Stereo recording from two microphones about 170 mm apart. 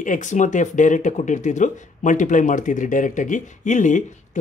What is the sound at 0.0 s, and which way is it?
Speech, 45° left (ahead or behind).